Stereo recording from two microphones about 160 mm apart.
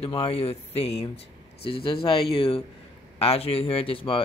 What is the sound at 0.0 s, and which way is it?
Speech, 35° left (ahead or behind).